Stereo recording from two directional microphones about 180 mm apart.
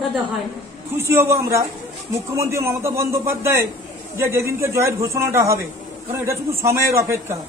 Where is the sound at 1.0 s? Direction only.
15° right (ahead or behind).